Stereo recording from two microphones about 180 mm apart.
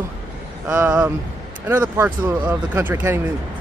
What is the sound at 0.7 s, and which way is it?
Speech, 10° right (ahead or behind).